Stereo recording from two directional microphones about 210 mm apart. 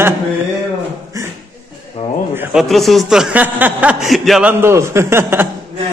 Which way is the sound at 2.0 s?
30° left (ahead or behind).